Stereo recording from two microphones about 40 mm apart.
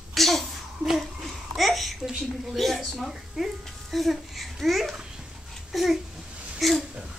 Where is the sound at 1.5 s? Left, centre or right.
Centre.